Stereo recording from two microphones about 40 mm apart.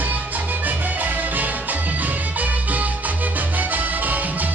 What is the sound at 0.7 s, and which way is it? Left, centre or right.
Music, right.